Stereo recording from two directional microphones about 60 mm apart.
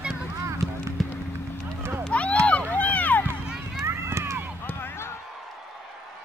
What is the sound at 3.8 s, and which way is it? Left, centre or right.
Run, right.